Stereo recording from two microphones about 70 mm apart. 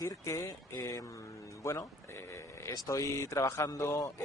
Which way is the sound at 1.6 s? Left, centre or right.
Left.